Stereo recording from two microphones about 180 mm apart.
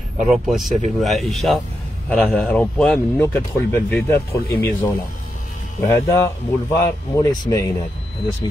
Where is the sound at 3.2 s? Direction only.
15° left (ahead or behind).